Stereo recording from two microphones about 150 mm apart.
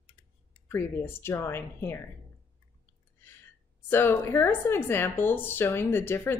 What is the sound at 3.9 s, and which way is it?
Speech, 15° left (ahead or behind).